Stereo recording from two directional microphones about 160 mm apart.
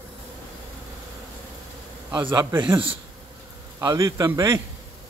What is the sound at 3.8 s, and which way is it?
Speech, 20° right (ahead or behind).